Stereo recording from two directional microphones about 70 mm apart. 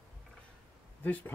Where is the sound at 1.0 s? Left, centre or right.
Left.